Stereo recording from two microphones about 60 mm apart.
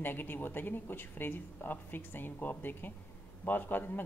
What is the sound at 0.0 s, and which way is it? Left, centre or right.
A woman's voice, left.